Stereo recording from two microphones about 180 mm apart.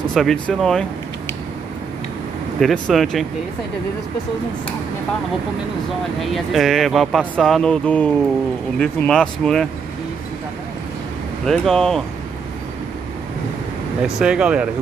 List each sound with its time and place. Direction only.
0.1 s speech: centre (ahead or behind)
2.6 s speech: centre (ahead or behind)
6.1 s speech: centre (ahead or behind)
11.4 s speech: centre (ahead or behind)
14.0 s speech: 5° right (ahead or behind)